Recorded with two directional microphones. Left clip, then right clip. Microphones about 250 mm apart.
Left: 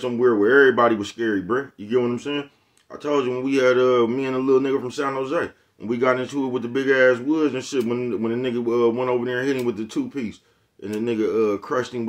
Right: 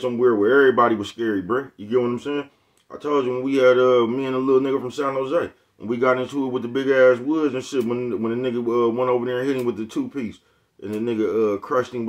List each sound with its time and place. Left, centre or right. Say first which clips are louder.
0.0 s speech: even; centre